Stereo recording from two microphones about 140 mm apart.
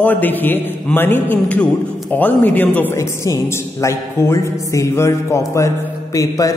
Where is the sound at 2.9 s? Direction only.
20° left (ahead or behind).